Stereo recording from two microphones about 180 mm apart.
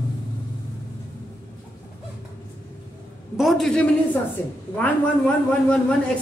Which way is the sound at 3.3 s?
Centre (ahead or behind).